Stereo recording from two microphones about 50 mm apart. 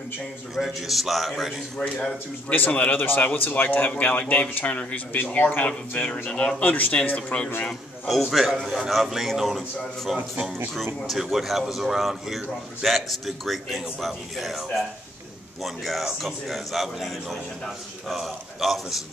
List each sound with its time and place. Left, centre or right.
0.6 s a man's voice: centre
1.8 s speech: centre
2.5 s speech: left
5.7 s speech: left
6.1 s speech: left
8.1 s a man's voice: centre